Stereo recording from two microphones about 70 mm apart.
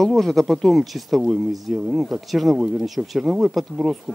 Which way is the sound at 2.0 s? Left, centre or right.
Centre.